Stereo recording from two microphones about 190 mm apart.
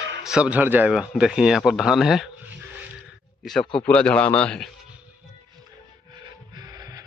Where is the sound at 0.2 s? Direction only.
5° right (ahead or behind).